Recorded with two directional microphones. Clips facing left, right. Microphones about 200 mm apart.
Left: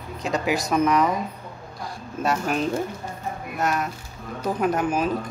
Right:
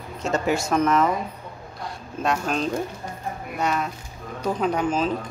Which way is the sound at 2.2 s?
5° left (ahead or behind).